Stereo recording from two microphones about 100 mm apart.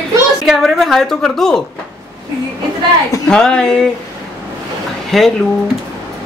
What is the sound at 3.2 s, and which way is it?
Speech, 5° left (ahead or behind).